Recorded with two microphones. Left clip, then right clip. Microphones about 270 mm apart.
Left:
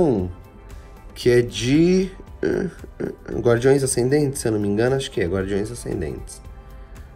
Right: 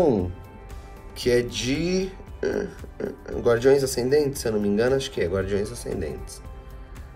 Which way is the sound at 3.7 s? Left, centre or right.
Left.